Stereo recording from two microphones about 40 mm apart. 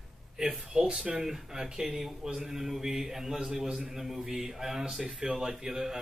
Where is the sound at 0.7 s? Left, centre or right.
Right.